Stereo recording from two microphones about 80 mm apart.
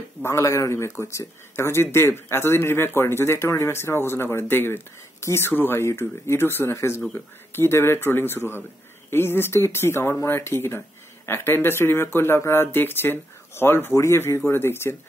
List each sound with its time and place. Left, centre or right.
0.2 s speech: left